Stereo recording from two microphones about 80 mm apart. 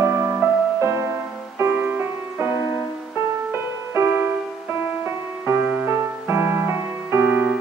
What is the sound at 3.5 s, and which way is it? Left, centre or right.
Music, right.